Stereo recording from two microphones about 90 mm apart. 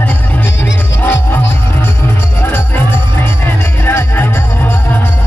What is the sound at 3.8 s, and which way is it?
Music, 25° left (ahead or behind).